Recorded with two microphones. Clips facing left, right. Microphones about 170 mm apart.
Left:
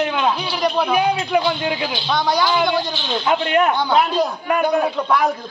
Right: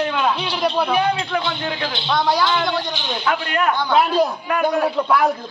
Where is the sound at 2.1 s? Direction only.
Centre (ahead or behind).